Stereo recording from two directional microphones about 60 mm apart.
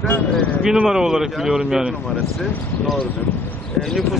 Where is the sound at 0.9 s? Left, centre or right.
Centre.